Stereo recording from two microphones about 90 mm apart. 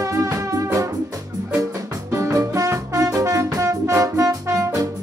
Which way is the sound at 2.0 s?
35° right (ahead or behind).